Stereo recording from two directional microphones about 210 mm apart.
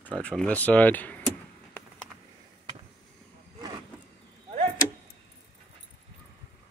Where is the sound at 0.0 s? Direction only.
5° left (ahead or behind).